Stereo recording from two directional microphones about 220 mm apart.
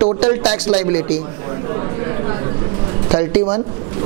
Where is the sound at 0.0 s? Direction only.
25° right (ahead or behind).